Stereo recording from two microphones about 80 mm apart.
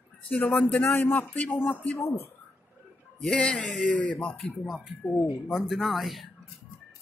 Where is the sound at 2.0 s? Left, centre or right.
Left.